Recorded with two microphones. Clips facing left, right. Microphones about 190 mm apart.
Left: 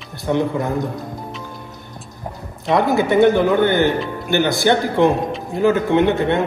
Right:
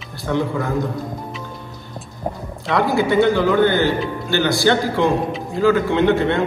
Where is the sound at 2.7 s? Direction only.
20° left (ahead or behind).